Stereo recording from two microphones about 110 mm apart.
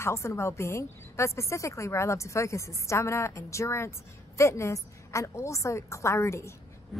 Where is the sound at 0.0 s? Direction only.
25° left (ahead or behind).